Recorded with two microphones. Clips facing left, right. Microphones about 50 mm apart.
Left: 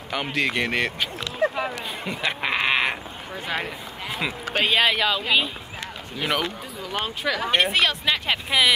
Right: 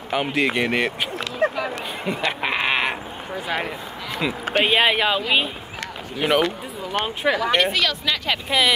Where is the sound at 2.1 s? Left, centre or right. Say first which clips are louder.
Right 2 dB; centre.